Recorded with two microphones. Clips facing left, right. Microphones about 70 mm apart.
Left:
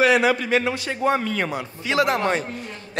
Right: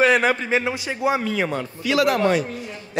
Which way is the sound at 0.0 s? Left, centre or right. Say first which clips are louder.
Even; right.